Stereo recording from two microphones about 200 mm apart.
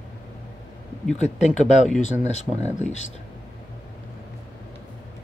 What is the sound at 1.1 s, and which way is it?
Speech, 35° left (ahead or behind).